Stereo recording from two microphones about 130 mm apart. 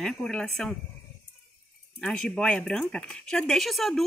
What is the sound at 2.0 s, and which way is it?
Speech, 5° left (ahead or behind).